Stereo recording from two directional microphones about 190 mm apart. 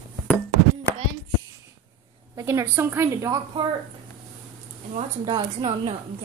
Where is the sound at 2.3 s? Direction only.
15° right (ahead or behind).